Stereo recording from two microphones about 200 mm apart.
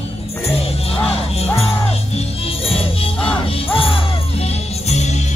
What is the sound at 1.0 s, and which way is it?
Music, 30° left (ahead or behind).